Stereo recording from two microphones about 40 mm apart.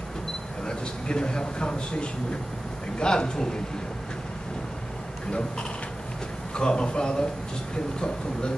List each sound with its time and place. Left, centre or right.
0.7 s a man's voice: left
6.5 s speech: left